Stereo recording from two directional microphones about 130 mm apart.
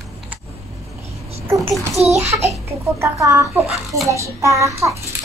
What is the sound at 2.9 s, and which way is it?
Speech, 25° right (ahead or behind).